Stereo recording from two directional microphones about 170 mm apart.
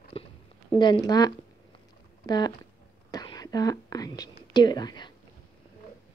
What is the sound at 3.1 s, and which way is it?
Whispering, 20° left (ahead or behind).